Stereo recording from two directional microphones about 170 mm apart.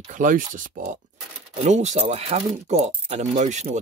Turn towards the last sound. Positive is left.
turn(degrees=-45)  # may be behind; listen again after turning